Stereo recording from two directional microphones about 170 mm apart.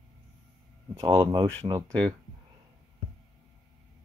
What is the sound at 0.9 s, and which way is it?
Speech, 20° right (ahead or behind).